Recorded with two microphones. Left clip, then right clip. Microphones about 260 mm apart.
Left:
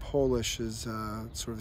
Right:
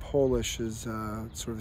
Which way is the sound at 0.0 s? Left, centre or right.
Centre.